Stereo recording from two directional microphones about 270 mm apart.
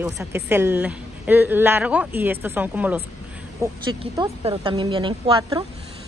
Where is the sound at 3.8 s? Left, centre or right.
Centre.